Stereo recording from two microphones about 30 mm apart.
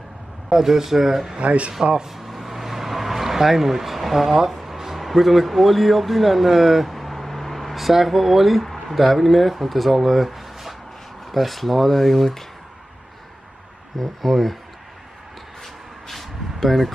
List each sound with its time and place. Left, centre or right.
0.5 s speech: centre
1.4 s speech: right
2.0 s vehicle: centre
6.9 s vehicle: centre
7.7 s speech: centre
10.2 s a sound: centre
11.3 s speech: centre
13.9 s speech: centre
15.6 s a sound: centre